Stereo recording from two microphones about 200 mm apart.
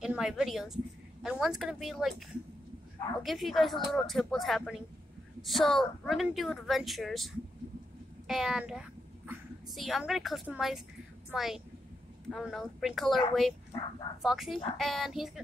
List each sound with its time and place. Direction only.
0.0 s a woman's voice: centre (ahead or behind)
8.3 s speech: centre (ahead or behind)